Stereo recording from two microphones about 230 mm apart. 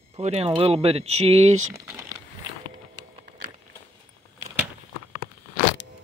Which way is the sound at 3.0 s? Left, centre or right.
Centre.